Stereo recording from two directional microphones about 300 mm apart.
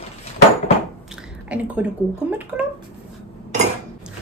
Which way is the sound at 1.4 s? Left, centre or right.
Centre.